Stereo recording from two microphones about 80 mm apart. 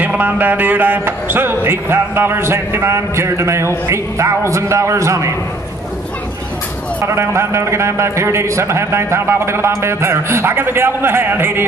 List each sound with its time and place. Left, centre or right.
0.0 s music: right
7.0 s music: right